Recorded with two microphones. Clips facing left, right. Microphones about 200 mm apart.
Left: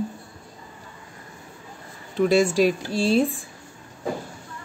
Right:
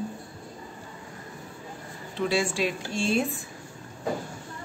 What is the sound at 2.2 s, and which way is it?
Speech, 45° left (ahead or behind).